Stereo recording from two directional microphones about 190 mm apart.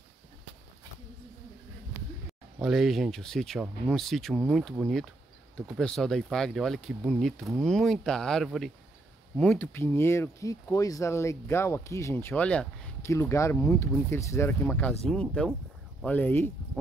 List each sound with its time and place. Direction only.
2.6 s speech: centre (ahead or behind)